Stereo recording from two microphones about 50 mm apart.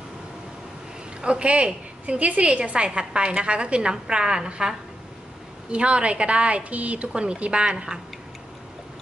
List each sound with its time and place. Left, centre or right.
1.2 s a woman's voice: right